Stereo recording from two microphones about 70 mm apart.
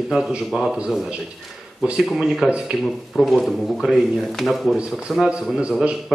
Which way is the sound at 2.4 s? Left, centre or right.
Centre.